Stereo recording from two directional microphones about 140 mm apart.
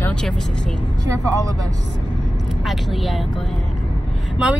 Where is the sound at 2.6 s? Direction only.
Centre (ahead or behind).